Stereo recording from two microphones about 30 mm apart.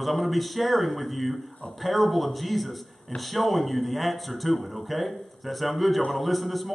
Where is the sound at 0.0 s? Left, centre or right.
Centre.